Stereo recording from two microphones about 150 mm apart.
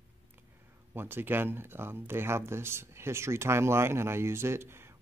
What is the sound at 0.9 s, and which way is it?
Speech, 15° right (ahead or behind).